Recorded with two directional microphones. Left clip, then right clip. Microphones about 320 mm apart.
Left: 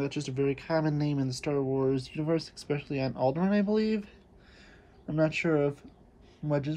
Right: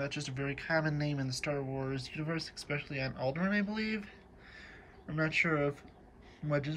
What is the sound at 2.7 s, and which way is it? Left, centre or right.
Speech, centre.